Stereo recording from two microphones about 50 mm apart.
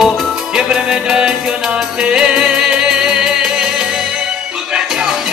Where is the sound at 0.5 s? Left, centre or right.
Centre.